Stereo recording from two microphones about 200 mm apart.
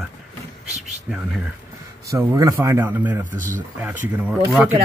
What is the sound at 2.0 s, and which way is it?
Speech, 15° right (ahead or behind).